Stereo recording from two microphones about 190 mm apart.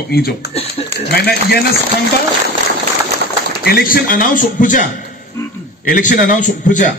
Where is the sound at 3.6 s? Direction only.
50° left (ahead or behind).